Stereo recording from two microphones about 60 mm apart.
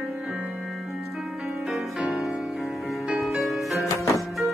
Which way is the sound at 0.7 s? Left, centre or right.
Centre.